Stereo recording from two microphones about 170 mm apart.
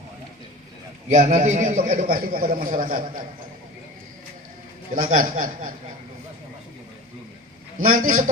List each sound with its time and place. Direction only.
1.0 s a man's voice: 45° right (ahead or behind)
4.9 s a man's voice: 50° right (ahead or behind)
7.8 s a man's voice: 50° right (ahead or behind)